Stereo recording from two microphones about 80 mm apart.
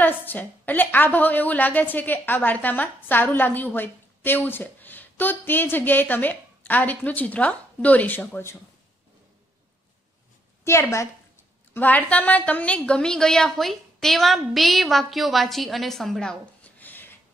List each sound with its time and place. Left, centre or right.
0.0 s a woman's voice: left
10.6 s a woman's voice: left
11.7 s a woman's voice: left
16.7 s a sound: left